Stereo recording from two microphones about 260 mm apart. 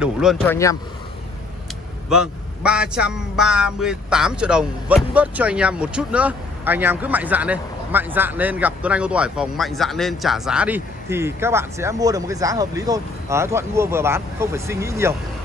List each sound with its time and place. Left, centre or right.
0.0 s a man's voice: centre
2.0 s a man's voice: centre